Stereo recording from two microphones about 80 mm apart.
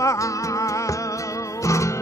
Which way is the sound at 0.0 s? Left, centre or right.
Left.